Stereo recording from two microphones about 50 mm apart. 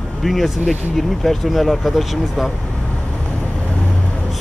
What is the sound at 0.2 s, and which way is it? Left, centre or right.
Speech, centre.